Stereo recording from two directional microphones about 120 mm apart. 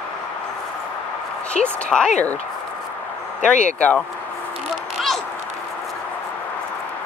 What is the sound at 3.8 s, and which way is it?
Speech, 10° left (ahead or behind).